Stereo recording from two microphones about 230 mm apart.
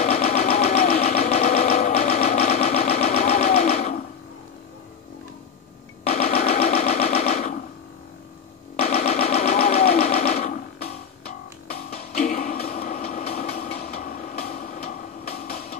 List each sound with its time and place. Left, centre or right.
0.0 s engine: left
6.0 s engine: left
8.7 s engine: left
11.9 s vehicle: left